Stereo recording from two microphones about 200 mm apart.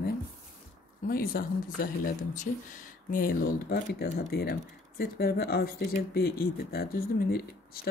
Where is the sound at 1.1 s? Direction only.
45° left (ahead or behind).